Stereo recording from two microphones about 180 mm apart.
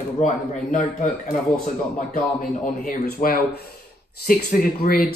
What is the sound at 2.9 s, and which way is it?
Speech, 50° left (ahead or behind).